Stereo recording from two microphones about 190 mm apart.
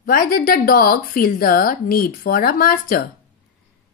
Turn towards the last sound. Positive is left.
turn(degrees=50)  # may be behind; listen again after turning